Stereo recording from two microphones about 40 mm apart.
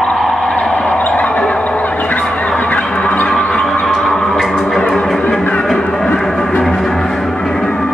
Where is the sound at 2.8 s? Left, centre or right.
Left.